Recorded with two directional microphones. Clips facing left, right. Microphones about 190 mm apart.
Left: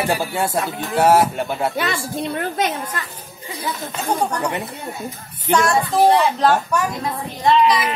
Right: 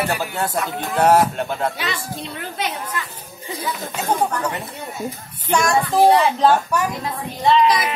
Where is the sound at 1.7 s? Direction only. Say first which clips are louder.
Left 5 dB; 50° left (ahead or behind).